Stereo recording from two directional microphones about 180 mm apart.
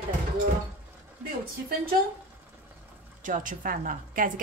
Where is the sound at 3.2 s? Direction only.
45° right (ahead or behind).